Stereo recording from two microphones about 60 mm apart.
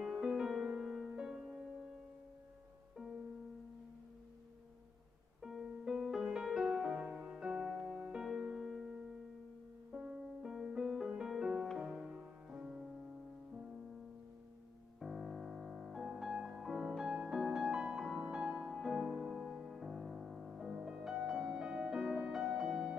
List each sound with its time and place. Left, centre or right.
0.0 s music: centre
5.4 s music: centre
8.2 s music: centre
9.9 s music: centre
15.0 s music: centre